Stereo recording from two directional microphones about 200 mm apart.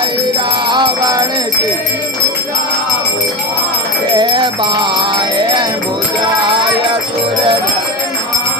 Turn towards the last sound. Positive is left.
turn(degrees=-25)  # may be behind; listen again after turning